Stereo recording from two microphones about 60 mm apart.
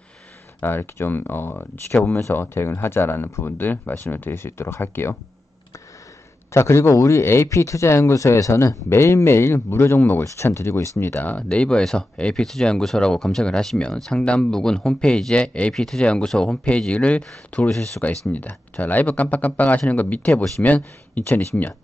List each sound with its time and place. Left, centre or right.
0.6 s speech: left
6.5 s speech: left
7.4 s speech: left
8.8 s speech: left
11.0 s speech: left
11.4 s speech: centre
17.6 s speech: centre
18.3 s speech: left